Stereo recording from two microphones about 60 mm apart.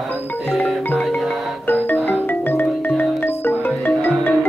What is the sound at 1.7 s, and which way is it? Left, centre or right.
Music, left.